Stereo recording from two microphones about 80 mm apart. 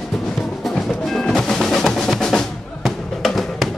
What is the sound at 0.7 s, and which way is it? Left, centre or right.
Percussion, centre.